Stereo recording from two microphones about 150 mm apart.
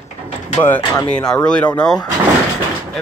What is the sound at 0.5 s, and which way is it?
Speech, 15° left (ahead or behind).